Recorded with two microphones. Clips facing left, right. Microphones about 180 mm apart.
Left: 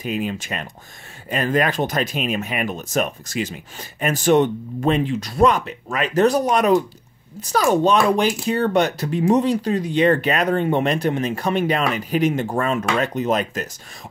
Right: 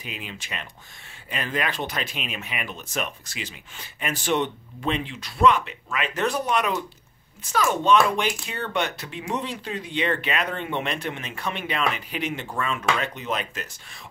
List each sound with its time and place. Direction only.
0.0 s speech: 45° left (ahead or behind)